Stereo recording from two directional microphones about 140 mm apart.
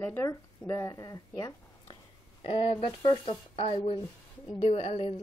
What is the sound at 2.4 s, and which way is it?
Speech, 45° left (ahead or behind).